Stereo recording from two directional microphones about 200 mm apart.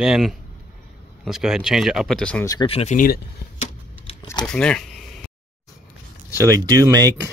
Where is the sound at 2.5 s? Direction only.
25° left (ahead or behind); by 3.7 s 45° left (ahead or behind).